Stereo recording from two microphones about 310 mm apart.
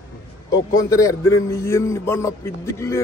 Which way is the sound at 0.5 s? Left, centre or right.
Centre.